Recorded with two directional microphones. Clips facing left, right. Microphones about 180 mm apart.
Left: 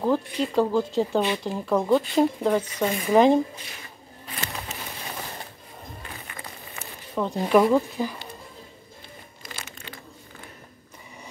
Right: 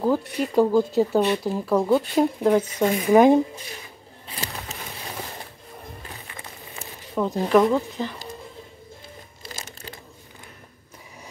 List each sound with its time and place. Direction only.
0.4 s speech: 10° right (ahead or behind)
6.3 s a sound: 5° right (ahead or behind)
9.4 s crumpling: 35° right (ahead or behind)